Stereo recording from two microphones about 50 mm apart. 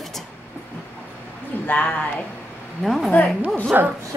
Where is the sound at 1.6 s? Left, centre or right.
Left.